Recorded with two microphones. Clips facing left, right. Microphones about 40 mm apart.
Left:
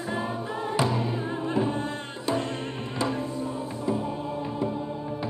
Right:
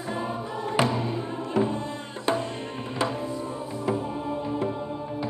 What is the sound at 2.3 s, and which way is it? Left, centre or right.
Music, right.